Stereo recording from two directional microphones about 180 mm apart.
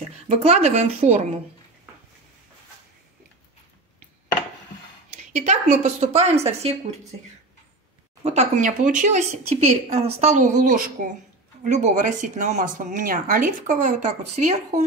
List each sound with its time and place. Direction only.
0.3 s a woman's voice: 35° right (ahead or behind)
5.3 s a woman's voice: 40° right (ahead or behind)
8.2 s a woman's voice: 40° right (ahead or behind)